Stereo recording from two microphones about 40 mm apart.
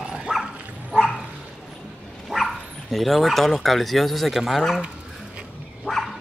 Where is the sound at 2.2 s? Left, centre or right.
Centre.